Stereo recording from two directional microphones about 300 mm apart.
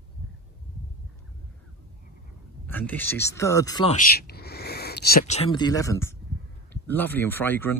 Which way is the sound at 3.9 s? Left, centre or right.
Left.